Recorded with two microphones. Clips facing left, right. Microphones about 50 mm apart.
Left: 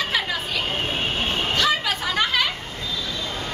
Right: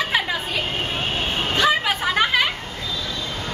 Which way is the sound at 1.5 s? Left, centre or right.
Right.